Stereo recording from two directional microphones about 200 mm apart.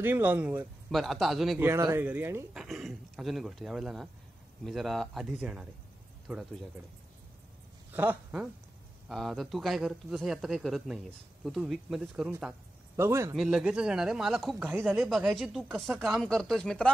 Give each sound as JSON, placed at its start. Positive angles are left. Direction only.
{"t": 0.0, "sound": "speech", "side_deg": -10}
{"t": 1.7, "sound": "speech", "side_deg": -10}
{"t": 7.9, "sound": "speech", "side_deg": -10}